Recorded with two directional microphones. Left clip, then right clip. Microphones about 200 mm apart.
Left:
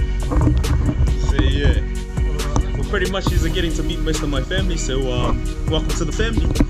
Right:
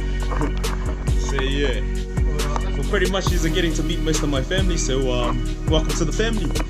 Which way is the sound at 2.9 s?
Centre (ahead or behind).